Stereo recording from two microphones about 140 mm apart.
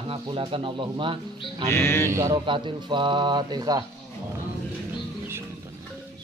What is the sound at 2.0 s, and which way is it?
Speech, 20° right (ahead or behind).